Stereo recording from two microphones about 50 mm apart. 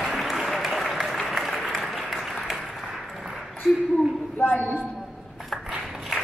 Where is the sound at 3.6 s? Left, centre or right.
Centre.